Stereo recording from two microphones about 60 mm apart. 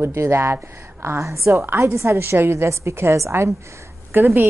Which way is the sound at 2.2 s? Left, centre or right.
Right.